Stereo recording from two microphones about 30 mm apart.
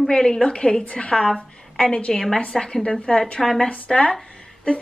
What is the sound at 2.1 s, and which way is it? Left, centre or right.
Speech, left.